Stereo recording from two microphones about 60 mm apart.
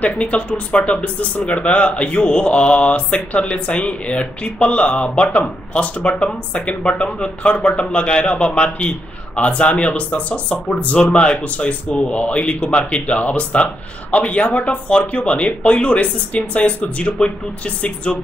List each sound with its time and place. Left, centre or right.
0.0 s speech: left